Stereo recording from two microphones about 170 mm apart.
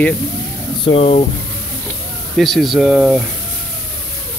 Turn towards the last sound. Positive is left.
turn(degrees=-5)  # may be behind; listen again after turning